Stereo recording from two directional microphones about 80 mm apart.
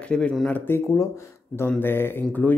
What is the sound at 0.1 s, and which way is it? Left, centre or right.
Speech, centre.